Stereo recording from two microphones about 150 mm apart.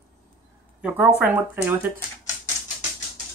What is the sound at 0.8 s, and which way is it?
Speech, 10° right (ahead or behind).